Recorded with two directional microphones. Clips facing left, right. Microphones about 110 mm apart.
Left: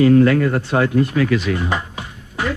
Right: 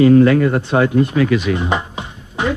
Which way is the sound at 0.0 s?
20° right (ahead or behind).